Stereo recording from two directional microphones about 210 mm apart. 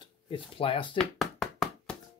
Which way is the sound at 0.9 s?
Centre (ahead or behind).